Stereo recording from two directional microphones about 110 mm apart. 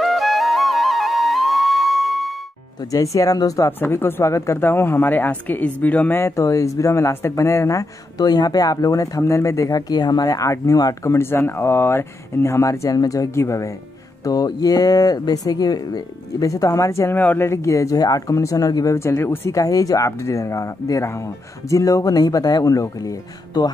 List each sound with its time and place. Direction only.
0.0 s flute: centre (ahead or behind)
2.8 s speech: 35° left (ahead or behind)
11.1 s speech: 20° left (ahead or behind)
14.2 s speech: 35° left (ahead or behind)
18.9 s speech: 25° left (ahead or behind)